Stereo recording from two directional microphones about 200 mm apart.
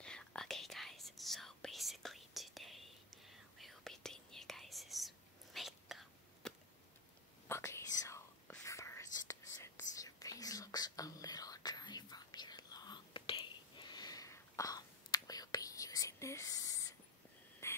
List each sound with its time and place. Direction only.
0.0 s whispering: 5° left (ahead or behind)
7.4 s whispering: 15° left (ahead or behind)
17.6 s frog: 15° left (ahead or behind)